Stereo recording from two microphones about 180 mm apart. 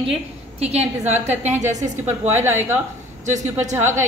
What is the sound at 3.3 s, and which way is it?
Speech, 40° right (ahead or behind).